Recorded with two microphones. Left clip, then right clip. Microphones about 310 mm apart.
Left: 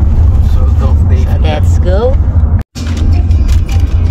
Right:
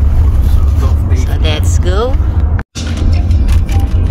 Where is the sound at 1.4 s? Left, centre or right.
Centre.